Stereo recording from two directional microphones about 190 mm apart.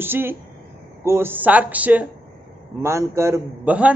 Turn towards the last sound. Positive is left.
turn(degrees=-5)  # may be behind; listen again after turning